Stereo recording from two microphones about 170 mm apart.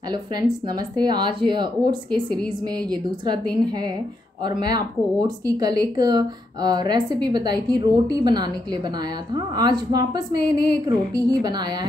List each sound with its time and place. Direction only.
0.1 s speech: 25° right (ahead or behind)